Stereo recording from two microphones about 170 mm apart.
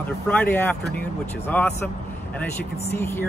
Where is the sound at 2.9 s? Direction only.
15° left (ahead or behind).